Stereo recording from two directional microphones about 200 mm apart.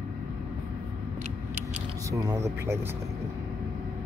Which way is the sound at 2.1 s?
20° right (ahead or behind).